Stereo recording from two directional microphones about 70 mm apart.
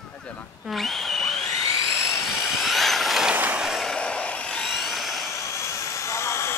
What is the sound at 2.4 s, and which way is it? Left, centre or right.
Vehicle, centre.